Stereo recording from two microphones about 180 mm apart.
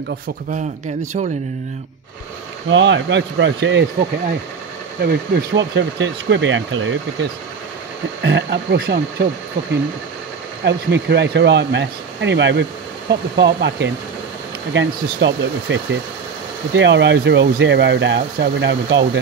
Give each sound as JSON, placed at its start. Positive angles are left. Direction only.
{"t": 2.7, "sound": "speech", "side_deg": -90}
{"t": 5.0, "sound": "speech", "side_deg": -70}
{"t": 8.2, "sound": "speech", "side_deg": -75}
{"t": 10.6, "sound": "speech", "side_deg": -70}